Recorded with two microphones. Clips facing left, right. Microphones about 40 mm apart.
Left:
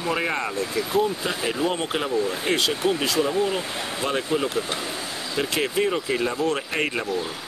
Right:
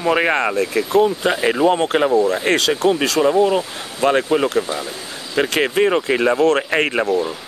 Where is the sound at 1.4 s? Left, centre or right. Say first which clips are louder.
Right 9 dB; right.